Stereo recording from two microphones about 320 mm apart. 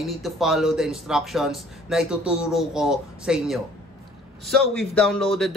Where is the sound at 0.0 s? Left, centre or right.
Centre.